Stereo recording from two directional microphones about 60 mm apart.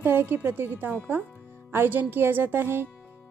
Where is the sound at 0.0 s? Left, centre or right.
Right.